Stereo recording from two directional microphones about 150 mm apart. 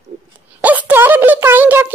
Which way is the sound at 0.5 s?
10° right (ahead or behind).